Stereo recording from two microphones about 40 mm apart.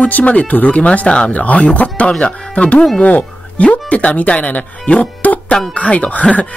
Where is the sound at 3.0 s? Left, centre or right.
Left.